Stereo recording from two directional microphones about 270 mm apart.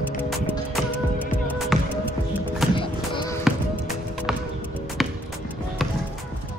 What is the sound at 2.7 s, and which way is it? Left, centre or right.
Music, centre.